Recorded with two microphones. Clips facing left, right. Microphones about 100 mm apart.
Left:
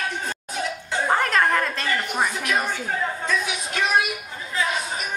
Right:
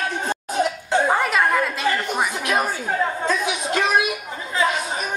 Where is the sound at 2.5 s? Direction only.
40° right (ahead or behind).